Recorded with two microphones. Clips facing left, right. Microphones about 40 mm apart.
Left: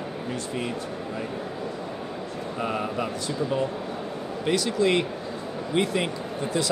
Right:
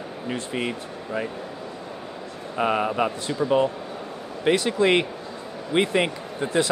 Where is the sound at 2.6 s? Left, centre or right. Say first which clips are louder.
Right 6 dB; right.